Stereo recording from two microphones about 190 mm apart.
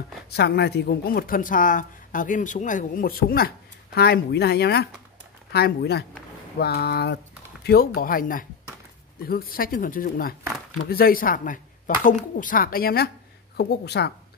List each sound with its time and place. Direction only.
0.3 s speech: 60° left (ahead or behind)